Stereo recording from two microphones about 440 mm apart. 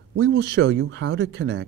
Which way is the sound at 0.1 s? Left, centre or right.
Right.